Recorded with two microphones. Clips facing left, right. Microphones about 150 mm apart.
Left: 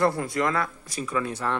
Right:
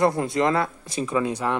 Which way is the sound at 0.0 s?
20° right (ahead or behind).